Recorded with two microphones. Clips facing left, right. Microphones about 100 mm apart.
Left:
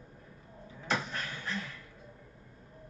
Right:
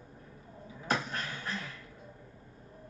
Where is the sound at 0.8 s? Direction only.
45° right (ahead or behind).